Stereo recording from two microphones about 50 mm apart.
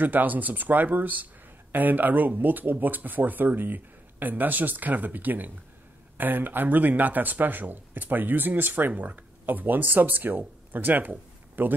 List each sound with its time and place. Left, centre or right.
0.0 s speech: right